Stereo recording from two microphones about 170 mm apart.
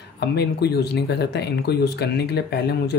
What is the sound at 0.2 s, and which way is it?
Speech, 70° left (ahead or behind).